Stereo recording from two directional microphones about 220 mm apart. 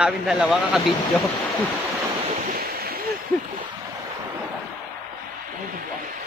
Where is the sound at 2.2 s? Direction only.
40° right (ahead or behind).